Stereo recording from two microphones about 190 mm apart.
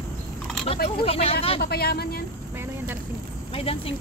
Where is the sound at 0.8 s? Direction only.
30° left (ahead or behind).